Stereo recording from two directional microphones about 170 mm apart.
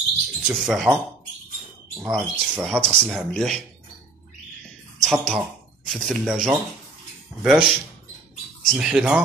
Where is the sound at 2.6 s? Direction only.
5° left (ahead or behind).